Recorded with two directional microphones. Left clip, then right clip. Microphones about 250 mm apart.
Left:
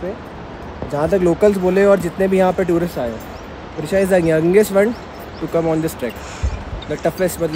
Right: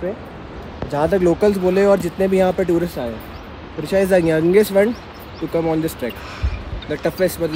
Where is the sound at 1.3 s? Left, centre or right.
Centre.